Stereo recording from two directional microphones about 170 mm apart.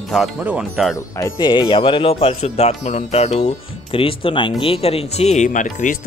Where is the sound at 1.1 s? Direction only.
20° left (ahead or behind).